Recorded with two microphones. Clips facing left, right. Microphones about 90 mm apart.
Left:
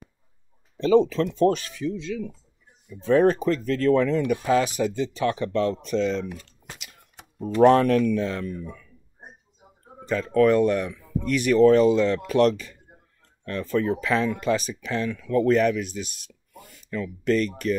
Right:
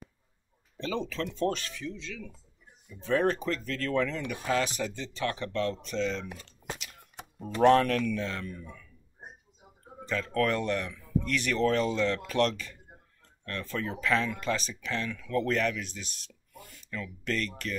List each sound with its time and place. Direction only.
0.7 s speech: 20° left (ahead or behind)
7.6 s speech: 20° left (ahead or behind)
10.0 s speech: 15° left (ahead or behind)